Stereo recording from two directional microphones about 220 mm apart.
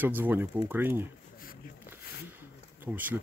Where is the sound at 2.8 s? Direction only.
10° right (ahead or behind).